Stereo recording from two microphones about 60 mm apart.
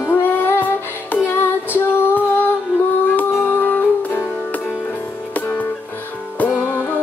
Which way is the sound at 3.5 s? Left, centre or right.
Left.